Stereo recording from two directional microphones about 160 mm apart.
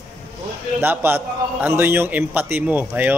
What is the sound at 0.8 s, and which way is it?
A man's voice, 10° right (ahead or behind).